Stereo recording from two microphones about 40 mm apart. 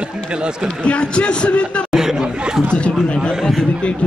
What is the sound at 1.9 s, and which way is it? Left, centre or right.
Chatter, centre.